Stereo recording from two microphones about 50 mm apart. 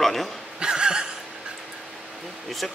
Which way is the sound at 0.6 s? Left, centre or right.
Centre.